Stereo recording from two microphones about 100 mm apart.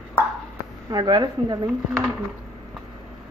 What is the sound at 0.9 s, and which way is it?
Speech, 45° right (ahead or behind).